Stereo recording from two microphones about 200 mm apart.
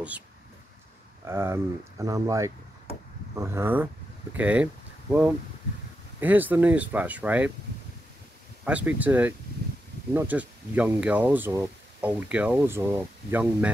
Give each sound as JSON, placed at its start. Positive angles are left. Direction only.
{"t": 1.2, "sound": "speech", "side_deg": -10}
{"t": 6.1, "sound": "speech", "side_deg": -10}
{"t": 8.6, "sound": "speech", "side_deg": -5}